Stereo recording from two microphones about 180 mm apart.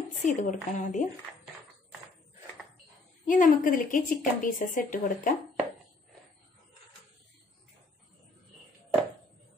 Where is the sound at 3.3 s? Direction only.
50° left (ahead or behind).